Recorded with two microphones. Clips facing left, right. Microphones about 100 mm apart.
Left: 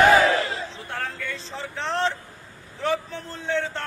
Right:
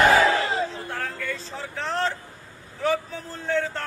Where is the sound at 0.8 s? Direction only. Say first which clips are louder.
Right 1 dB; centre (ahead or behind).